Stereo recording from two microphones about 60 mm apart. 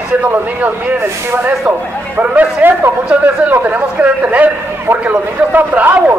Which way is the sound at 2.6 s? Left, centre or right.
Right.